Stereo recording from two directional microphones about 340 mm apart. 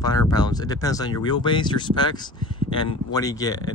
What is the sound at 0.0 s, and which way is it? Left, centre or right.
Speech, centre.